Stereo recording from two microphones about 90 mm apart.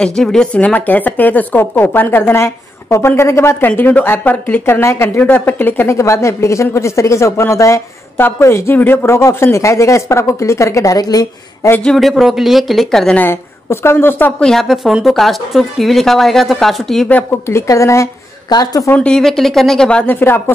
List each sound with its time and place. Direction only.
0.0 s a woman's voice: 5° left (ahead or behind)
5.9 s speech: 35° left (ahead or behind)
11.8 s a woman's voice: 5° left (ahead or behind)
13.2 s a woman's voice: 30° left (ahead or behind)
14.4 s a woman's voice: 5° left (ahead or behind)
17.5 s speech: 35° left (ahead or behind)
18.5 s a woman's voice: 45° left (ahead or behind)
18.9 s a woman's voice: 10° left (ahead or behind)
20.1 s a woman's voice: 20° left (ahead or behind)